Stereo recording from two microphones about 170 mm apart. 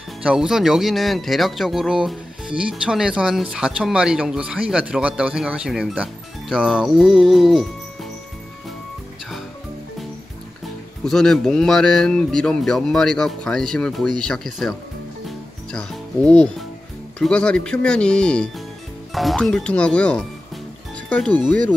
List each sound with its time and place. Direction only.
0.2 s speech: 5° right (ahead or behind)
6.5 s music: 5° right (ahead or behind)
11.1 s speech: 5° left (ahead or behind)
15.2 s music: centre (ahead or behind)
17.2 s speech: 5° left (ahead or behind)